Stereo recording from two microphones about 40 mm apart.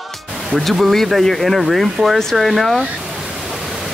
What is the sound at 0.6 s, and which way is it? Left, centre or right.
Speech, centre.